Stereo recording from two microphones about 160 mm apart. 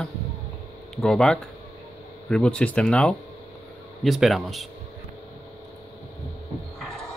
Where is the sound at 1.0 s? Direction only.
5° left (ahead or behind).